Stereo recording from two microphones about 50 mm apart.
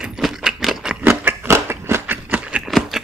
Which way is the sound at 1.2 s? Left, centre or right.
Right.